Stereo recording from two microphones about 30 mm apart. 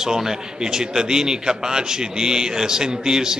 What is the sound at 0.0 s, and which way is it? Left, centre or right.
A man's voice, centre.